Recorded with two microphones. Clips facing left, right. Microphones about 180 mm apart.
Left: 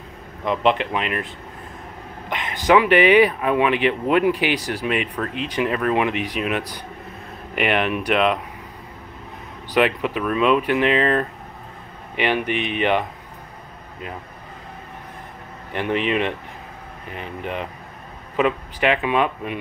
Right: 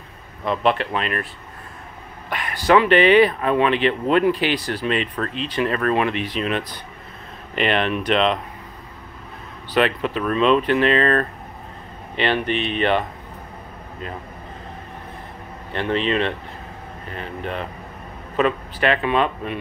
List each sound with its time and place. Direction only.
0.5 s speech: 20° left (ahead or behind)
9.8 s speech: 15° left (ahead or behind)
15.7 s speech: 15° left (ahead or behind)